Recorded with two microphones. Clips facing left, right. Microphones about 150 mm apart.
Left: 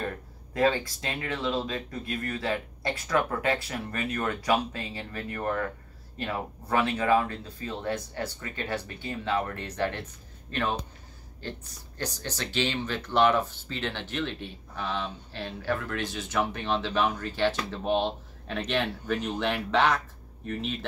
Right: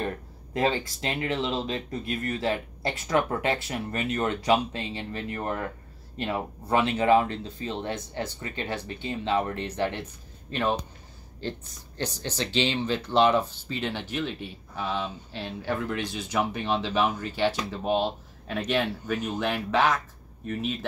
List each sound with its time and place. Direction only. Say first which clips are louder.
0.6 s speech: left 1 dB; 25° right (ahead or behind)
12.0 s speech: right 3 dB; 20° right (ahead or behind); by 20.0 s 5° right (ahead or behind)